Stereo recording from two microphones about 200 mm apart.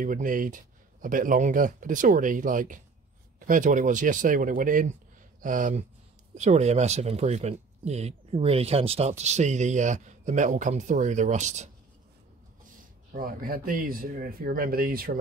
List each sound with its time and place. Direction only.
0.0 s speech: 40° right (ahead or behind)
13.1 s speech: 45° right (ahead or behind)